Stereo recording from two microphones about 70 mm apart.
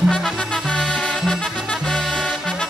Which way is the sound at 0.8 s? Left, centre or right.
Centre.